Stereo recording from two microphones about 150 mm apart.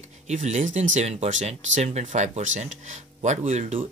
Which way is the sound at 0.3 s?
50° right (ahead or behind).